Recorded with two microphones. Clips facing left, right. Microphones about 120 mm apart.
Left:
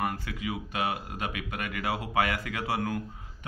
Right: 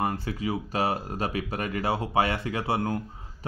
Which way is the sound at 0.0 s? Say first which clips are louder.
Right 4 dB; 30° right (ahead or behind).